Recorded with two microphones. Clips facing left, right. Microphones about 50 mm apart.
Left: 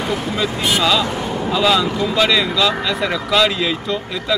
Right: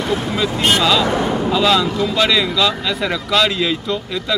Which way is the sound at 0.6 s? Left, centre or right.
Right.